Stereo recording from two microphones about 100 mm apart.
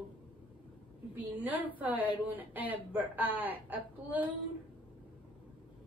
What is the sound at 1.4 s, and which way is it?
A woman's voice, 15° right (ahead or behind).